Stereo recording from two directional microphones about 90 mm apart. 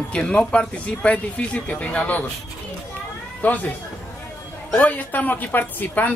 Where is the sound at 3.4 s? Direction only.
15° left (ahead or behind).